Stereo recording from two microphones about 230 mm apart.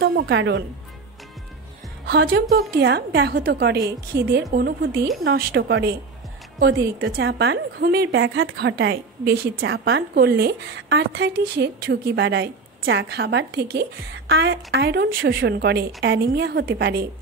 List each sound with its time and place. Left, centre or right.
0.0 s a woman's voice: right
2.0 s a woman's voice: right
9.6 s a woman's voice: right